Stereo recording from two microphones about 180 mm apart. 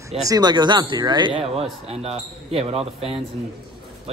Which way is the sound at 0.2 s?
20° right (ahead or behind).